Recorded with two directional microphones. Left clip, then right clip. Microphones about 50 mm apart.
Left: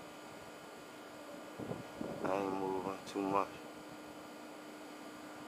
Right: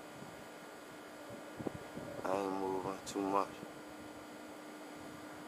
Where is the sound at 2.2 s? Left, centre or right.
Centre.